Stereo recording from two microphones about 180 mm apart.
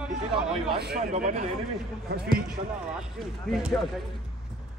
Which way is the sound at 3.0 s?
Centre (ahead or behind).